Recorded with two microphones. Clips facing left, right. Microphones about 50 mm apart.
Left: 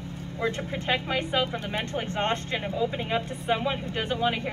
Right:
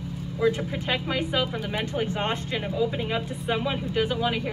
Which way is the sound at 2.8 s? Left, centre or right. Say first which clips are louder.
Right 1 dB; centre.